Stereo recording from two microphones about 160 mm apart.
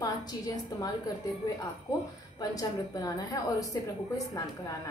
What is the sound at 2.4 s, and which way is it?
A woman's voice, 20° left (ahead or behind).